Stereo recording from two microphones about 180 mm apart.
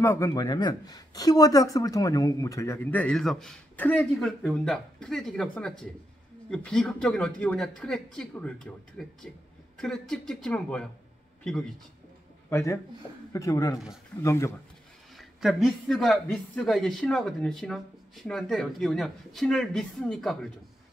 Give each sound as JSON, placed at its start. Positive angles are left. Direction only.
{"t": 0.0, "sound": "a man's voice", "side_deg": 15}
{"t": 12.4, "sound": "speech", "side_deg": 15}
{"t": 15.1, "sound": "a man's voice", "side_deg": 0}